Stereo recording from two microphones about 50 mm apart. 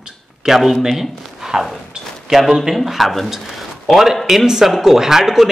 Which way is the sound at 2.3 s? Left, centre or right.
Centre.